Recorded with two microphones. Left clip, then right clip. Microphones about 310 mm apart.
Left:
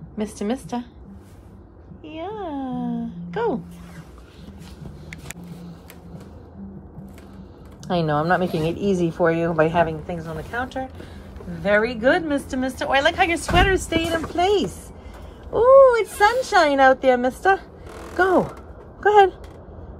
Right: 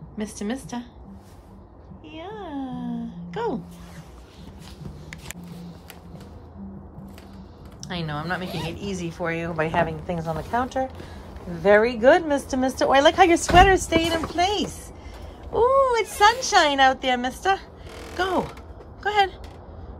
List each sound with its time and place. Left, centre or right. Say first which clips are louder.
0.2 s speech: left 4 dB; centre
2.0 s a sound: left 5 dB; centre
7.8 s a woman's voice: left 10 dB; centre